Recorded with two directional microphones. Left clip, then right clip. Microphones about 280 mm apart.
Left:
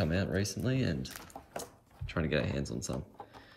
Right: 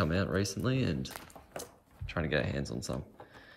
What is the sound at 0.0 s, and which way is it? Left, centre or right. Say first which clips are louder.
Speech: right 2 dB; centre.